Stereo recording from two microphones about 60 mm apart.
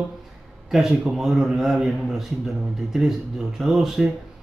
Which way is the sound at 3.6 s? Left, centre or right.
Centre.